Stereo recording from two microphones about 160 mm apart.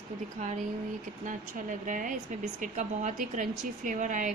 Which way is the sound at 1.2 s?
55° right (ahead or behind).